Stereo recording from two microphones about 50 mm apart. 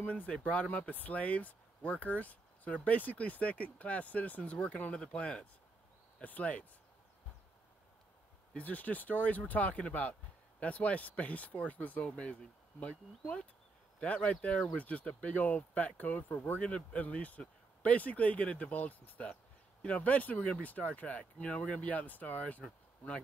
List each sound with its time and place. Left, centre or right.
0.0 s speech: left
8.5 s speech: left
13.9 s speech: left
22.6 s speech: left